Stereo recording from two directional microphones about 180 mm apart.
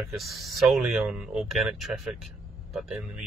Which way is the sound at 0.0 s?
Centre (ahead or behind).